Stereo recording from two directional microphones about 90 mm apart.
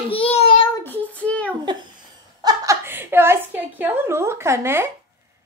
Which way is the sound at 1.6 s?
55° right (ahead or behind).